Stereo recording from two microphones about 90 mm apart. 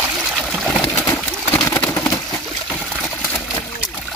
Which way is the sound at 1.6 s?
35° left (ahead or behind).